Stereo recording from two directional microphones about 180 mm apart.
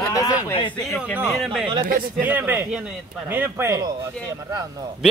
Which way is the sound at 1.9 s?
50° right (ahead or behind).